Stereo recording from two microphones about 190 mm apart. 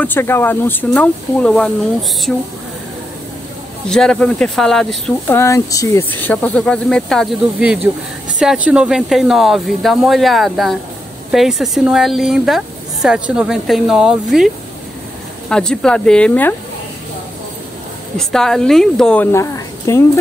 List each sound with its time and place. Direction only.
0.0 s speech: 10° left (ahead or behind)
3.9 s a woman's voice: 5° left (ahead or behind)
5.4 s a woman's voice: 15° left (ahead or behind); by 14.5 s centre (ahead or behind)
15.5 s a woman's voice: 5° left (ahead or behind)
18.1 s a woman's voice: 5° left (ahead or behind)
19.3 s a sound: 15° left (ahead or behind)